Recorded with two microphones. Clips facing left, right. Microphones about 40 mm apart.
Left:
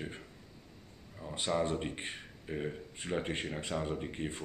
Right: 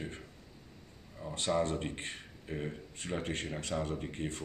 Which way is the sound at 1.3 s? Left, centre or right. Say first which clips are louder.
Right 1 dB; centre.